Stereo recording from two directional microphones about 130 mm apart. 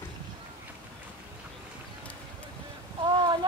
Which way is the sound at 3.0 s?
35° right (ahead or behind).